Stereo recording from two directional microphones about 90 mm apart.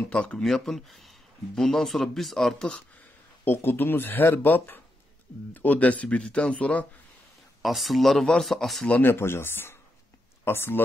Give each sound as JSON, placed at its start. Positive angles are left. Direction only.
{"t": 0.1, "sound": "speech", "side_deg": 15}
{"t": 0.4, "sound": "speech", "side_deg": 0}
{"t": 3.4, "sound": "speech", "side_deg": 25}
{"t": 7.6, "sound": "speech", "side_deg": 0}
{"t": 8.8, "sound": "speech", "side_deg": 20}